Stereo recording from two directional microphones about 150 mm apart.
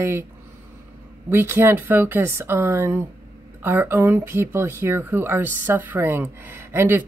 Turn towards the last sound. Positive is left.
turn(degrees=-15)  # may be behind; listen again after turning